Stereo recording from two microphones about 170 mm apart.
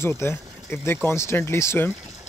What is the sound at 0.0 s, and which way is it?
Speech, 15° left (ahead or behind).